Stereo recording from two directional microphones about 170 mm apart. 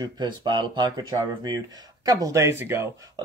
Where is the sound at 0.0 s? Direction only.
25° right (ahead or behind).